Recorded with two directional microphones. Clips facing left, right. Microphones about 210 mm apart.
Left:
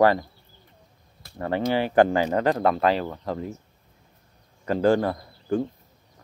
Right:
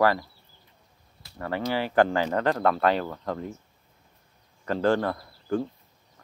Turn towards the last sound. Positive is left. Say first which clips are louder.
# left 2 dB
turn(degrees=15)  # may be behind; listen again after turning